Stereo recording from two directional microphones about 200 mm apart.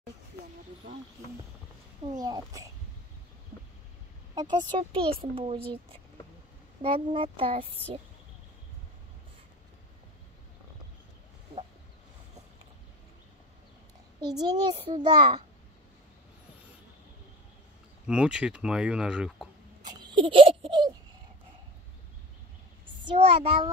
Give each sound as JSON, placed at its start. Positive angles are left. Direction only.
{"t": 2.1, "sound": "speech", "side_deg": -20}
{"t": 4.4, "sound": "speech", "side_deg": -20}
{"t": 14.4, "sound": "speech", "side_deg": -20}
{"t": 18.0, "sound": "speech", "side_deg": -5}
{"t": 19.9, "sound": "a sound", "side_deg": -20}
{"t": 23.1, "sound": "speech", "side_deg": -30}